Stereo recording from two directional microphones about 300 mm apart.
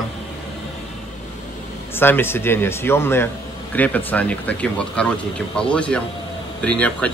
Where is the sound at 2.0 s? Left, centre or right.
Centre.